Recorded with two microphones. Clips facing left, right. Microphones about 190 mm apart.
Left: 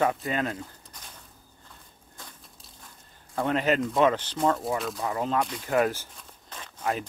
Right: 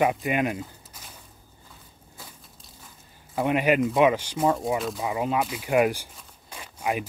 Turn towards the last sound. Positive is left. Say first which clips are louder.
# right 2 dB
turn(degrees=-10)  # may be behind; listen again after turning